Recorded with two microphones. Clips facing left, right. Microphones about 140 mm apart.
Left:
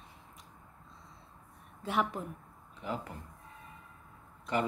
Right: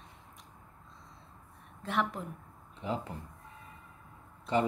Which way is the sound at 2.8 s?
25° right (ahead or behind).